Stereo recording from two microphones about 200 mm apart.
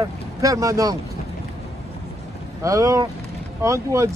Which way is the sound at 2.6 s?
15° right (ahead or behind).